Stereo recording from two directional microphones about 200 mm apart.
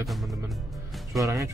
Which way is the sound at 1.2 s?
15° right (ahead or behind).